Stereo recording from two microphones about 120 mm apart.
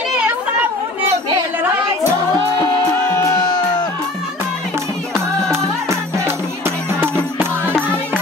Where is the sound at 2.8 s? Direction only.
20° left (ahead or behind).